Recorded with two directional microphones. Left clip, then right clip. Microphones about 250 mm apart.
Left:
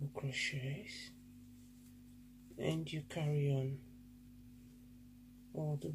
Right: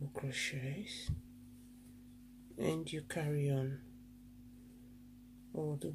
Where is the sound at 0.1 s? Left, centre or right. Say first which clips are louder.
Even; centre.